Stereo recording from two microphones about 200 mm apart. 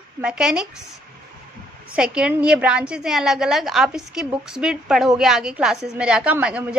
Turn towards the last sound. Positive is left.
turn(degrees=-5)  # may be behind; listen again after turning